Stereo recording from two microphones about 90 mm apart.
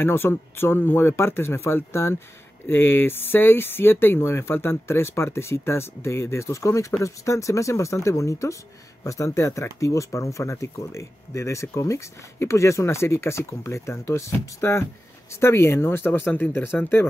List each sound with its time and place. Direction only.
0.0 s speech: 25° left (ahead or behind)